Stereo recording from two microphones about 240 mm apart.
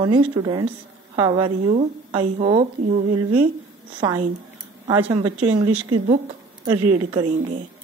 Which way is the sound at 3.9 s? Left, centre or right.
Centre.